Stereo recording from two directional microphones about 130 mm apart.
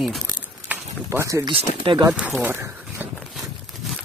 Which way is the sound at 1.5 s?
45° right (ahead or behind).